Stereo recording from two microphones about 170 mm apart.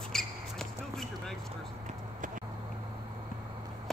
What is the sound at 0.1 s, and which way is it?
Basketball bounce, 5° left (ahead or behind).